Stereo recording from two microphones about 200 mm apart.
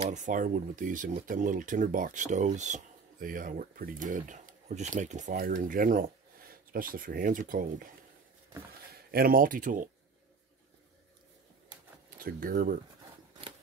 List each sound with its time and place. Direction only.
0.0 s speech: 35° right (ahead or behind)
8.9 s speech: 50° right (ahead or behind)
12.2 s speech: 45° right (ahead or behind)